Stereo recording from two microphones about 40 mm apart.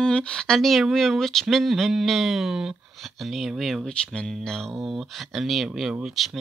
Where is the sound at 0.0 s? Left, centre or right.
Left.